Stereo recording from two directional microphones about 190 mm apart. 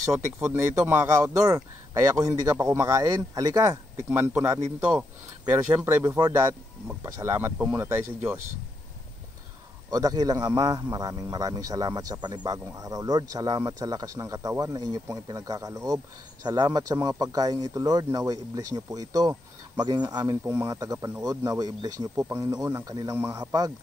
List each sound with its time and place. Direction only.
0.0 s speech: 10° right (ahead or behind)
5.8 s speech: 15° right (ahead or behind)
9.8 s speech: 20° right (ahead or behind)